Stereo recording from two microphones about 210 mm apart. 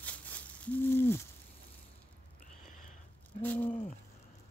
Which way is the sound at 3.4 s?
10° left (ahead or behind).